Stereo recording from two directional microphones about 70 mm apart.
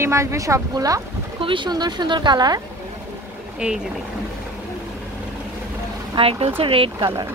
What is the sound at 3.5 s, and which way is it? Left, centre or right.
Speech, centre.